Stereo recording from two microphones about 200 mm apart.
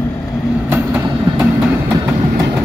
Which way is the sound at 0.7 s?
10° right (ahead or behind).